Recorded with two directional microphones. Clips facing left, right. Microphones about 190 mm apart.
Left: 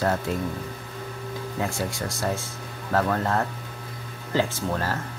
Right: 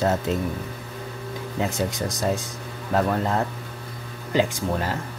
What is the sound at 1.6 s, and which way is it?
Speech, 20° right (ahead or behind).